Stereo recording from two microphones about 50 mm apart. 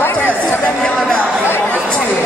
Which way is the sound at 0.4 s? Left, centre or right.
Left.